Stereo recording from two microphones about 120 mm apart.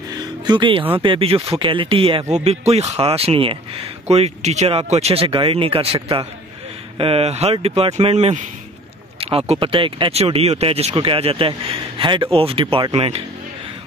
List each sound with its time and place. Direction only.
0.1 s music: 35° right (ahead or behind)
0.9 s speech: 45° right (ahead or behind)
2.3 s speech: 60° right (ahead or behind)
4.1 s speech: 65° right (ahead or behind)
10.9 s speech: 45° right (ahead or behind)